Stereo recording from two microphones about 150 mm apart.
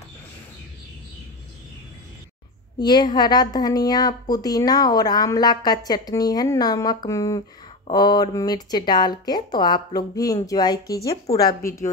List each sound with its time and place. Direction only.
2.8 s a woman's voice: 25° left (ahead or behind)